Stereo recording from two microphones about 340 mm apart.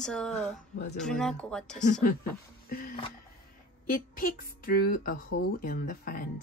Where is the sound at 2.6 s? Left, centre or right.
Left.